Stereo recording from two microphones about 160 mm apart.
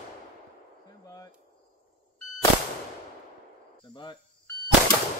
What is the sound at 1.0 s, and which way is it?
Speech, 20° left (ahead or behind).